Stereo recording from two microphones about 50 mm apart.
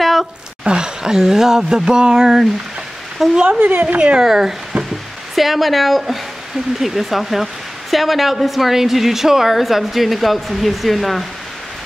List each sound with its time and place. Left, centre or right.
0.0 s a sound: centre
0.7 s a woman's voice: centre
3.5 s a woman's voice: right
4.2 s a woman's voice: centre